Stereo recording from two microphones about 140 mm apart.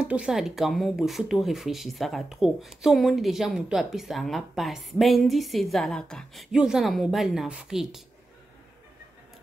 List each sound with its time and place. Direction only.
0.0 s speech: 5° right (ahead or behind)